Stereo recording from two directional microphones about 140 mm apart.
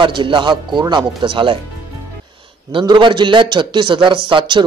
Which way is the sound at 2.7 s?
35° right (ahead or behind).